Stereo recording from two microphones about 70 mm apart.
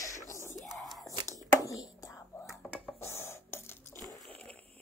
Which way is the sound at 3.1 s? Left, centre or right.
Left.